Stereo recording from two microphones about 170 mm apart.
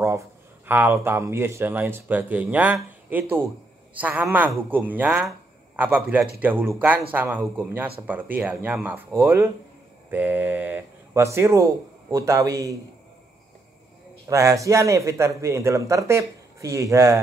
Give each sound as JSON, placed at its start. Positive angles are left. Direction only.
{"t": 0.0, "sound": "a man's voice", "side_deg": -15}
{"t": 14.2, "sound": "a man's voice", "side_deg": -20}